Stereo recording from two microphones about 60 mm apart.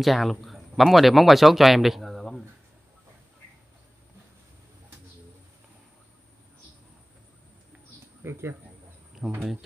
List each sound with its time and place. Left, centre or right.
0.0 s speech: centre
8.2 s speech: right
9.2 s speech: centre